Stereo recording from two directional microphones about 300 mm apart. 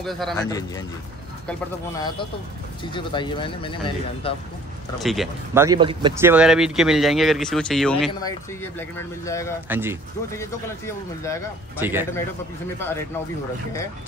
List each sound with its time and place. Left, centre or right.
0.0 s speech: centre
0.4 s speech: centre
1.9 s speech: centre
4.9 s speech: centre
8.1 s speech: centre
9.7 s speech: centre
11.8 s speech: centre
12.7 s speech: centre